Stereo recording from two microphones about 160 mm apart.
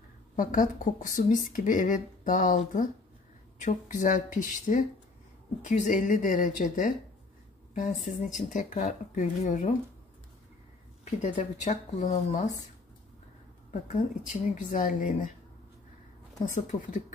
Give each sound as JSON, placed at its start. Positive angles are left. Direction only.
{"t": 0.4, "sound": "speech", "side_deg": 55}
{"t": 11.1, "sound": "speech", "side_deg": 50}
{"t": 14.2, "sound": "speech", "side_deg": 55}
{"t": 16.4, "sound": "speech", "side_deg": 50}